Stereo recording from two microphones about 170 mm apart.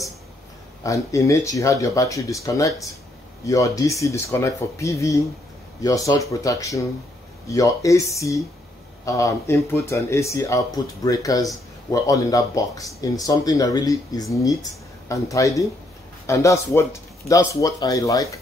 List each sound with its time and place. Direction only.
0.8 s speech: 20° left (ahead or behind)